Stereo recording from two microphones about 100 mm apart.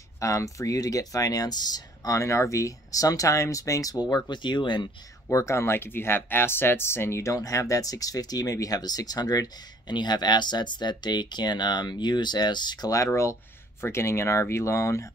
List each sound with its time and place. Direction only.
0.2 s speech: 30° left (ahead or behind)
4.1 s speech: 50° left (ahead or behind)
5.3 s speech: 30° left (ahead or behind)